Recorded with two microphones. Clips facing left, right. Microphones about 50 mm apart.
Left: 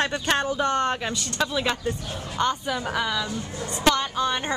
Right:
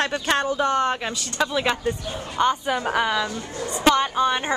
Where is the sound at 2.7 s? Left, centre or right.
Right.